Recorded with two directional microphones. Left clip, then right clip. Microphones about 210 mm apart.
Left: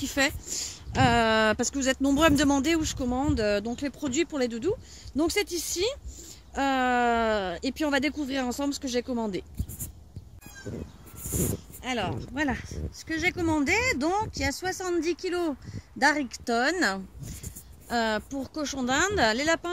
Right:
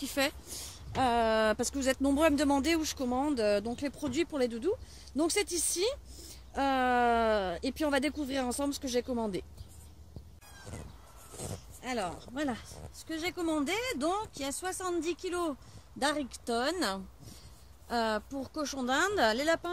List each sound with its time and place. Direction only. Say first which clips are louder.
0.0 s speech: left 5 dB; centre (ahead or behind)
0.9 s speech: left 5 dB; 10° left (ahead or behind)
11.8 s speech: left 4 dB; 5° right (ahead or behind)